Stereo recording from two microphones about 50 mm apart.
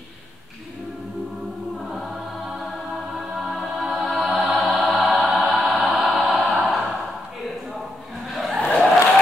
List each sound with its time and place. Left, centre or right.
1.8 s choir: centre
3.2 s music: centre
8.5 s a sound: left